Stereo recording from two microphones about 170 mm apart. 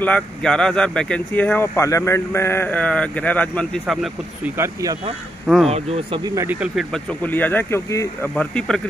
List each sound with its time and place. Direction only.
0.0 s speech: 5° left (ahead or behind)
4.6 s speech: 15° right (ahead or behind)
5.7 s speech: 35° right (ahead or behind)
6.2 s speech: 15° right (ahead or behind); by 8.8 s 5° left (ahead or behind)